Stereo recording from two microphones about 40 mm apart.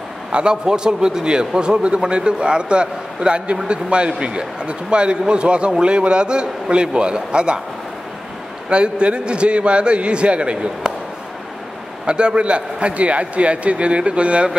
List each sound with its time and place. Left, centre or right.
0.3 s a man's voice: right
8.6 s a man's voice: right
12.1 s a man's voice: right